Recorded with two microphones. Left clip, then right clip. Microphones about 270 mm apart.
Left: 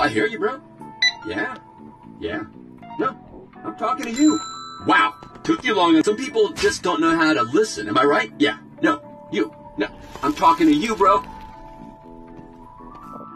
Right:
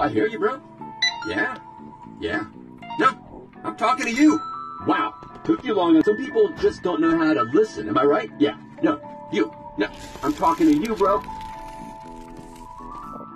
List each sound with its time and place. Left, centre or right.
0.0 s speech: left
0.3 s speech: centre
1.2 s speech: centre
2.9 s music: right
3.6 s speech: right
4.8 s speech: left
9.3 s speech: centre
10.2 s speech: left